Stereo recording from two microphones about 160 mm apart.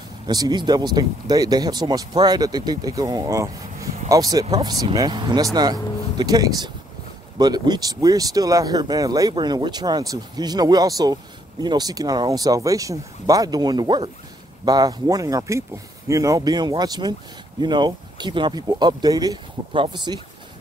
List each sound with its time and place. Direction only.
0.3 s speech: 25° right (ahead or behind)